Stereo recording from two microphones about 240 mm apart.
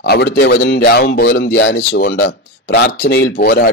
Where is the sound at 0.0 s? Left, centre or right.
Left.